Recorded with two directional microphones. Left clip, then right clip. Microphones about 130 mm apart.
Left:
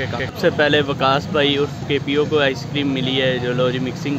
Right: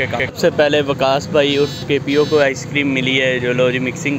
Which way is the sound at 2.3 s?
10° right (ahead or behind).